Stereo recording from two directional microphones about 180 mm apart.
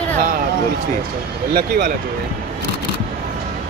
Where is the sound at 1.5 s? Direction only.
55° right (ahead or behind).